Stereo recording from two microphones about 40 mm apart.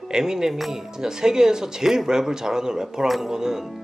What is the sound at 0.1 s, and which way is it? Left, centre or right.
Speech, centre.